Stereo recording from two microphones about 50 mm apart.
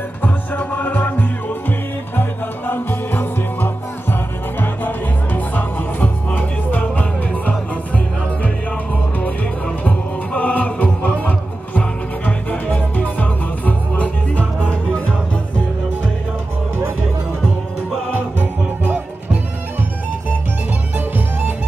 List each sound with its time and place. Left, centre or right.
0.2 s music: left
9.8 s music: left
18.1 s music: right